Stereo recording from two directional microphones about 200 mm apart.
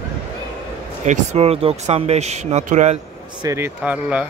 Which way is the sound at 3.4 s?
15° right (ahead or behind).